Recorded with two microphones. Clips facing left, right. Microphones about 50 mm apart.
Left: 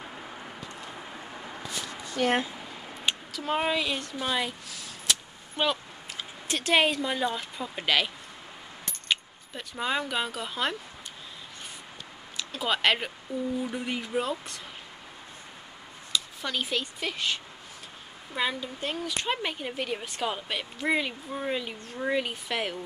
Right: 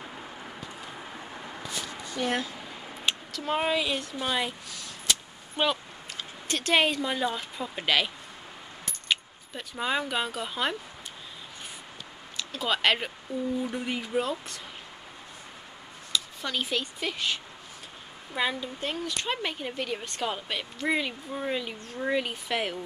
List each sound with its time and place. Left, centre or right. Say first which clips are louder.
0.0 s a sound: even; centre
0.8 s vehicle: even; centre
2.2 s speech: left 4 dB; left
2.5 s speech: even; centre
9.1 s speech: even; centre
12.4 s a woman's voice: even; centre
16.1 s a woman's voice: even; centre